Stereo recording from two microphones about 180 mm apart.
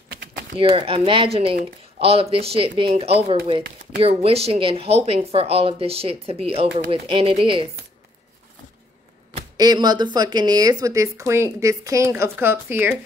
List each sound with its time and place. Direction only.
0.1 s a sound: 70° right (ahead or behind)
0.6 s speech: 30° right (ahead or behind)
9.6 s speech: 20° right (ahead or behind)